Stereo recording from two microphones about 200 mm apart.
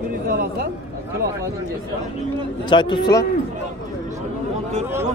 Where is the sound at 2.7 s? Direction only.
20° left (ahead or behind).